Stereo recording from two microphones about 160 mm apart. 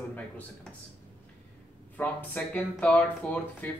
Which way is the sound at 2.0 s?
10° left (ahead or behind).